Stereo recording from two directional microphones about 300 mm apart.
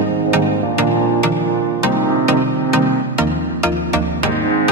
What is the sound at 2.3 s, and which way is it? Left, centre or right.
Music, right.